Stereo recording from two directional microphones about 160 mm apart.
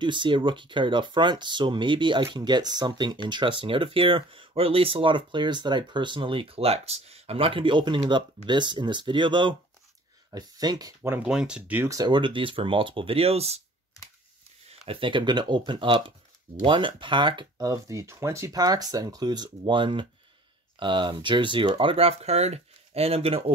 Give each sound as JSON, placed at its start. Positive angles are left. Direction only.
{"t": 0.0, "sound": "speech", "side_deg": -30}
{"t": 14.7, "sound": "speech", "side_deg": -35}